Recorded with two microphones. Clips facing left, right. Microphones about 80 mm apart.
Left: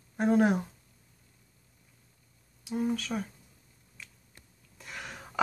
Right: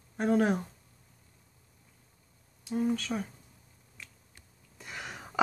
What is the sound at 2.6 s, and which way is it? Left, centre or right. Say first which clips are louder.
Speech: right 1 dB; centre.